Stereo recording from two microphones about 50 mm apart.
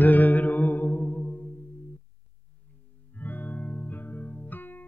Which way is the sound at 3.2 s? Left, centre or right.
Left.